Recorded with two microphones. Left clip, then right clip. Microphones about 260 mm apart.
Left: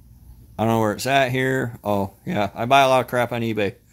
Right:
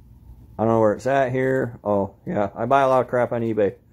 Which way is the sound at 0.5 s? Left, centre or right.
Left.